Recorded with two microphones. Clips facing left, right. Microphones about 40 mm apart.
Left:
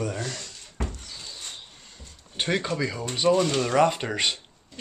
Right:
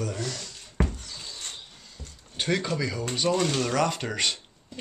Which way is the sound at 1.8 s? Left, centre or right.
Left.